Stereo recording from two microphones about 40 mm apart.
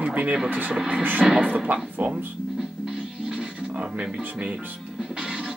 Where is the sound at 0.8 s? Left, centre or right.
Centre.